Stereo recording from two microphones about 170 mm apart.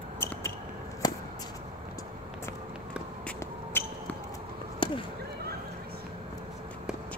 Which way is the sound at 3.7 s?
10° left (ahead or behind).